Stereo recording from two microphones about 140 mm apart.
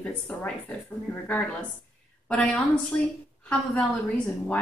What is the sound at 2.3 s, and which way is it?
A woman's voice, 5° left (ahead or behind).